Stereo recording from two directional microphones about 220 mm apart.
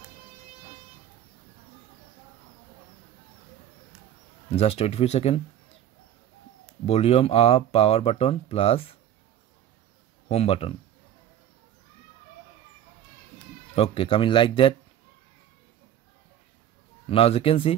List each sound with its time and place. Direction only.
4.6 s speech: 25° left (ahead or behind)
6.9 s speech: 25° left (ahead or behind)
10.2 s speech: 25° left (ahead or behind)
13.7 s speech: 25° left (ahead or behind)
17.1 s speech: 25° left (ahead or behind)